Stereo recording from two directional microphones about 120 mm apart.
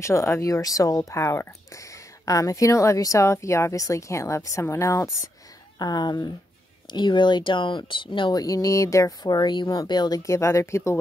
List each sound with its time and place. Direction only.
0.0 s speech: 25° left (ahead or behind)
5.8 s speech: 35° left (ahead or behind)